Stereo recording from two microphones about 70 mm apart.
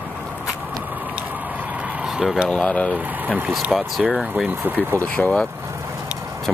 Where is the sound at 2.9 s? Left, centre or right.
Right.